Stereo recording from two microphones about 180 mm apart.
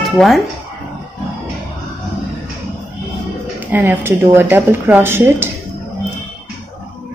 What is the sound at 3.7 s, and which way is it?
Speech, 10° right (ahead or behind).